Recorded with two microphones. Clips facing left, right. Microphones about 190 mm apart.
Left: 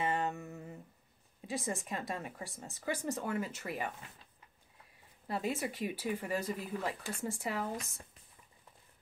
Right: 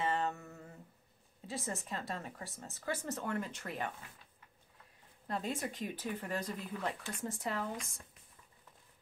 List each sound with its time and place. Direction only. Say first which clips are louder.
0.0 s a sound: left 1 dB; 15° left (ahead or behind)
1.4 s speech: left 3 dB; 15° left (ahead or behind)
5.2 s speech: left 2 dB; 5° left (ahead or behind)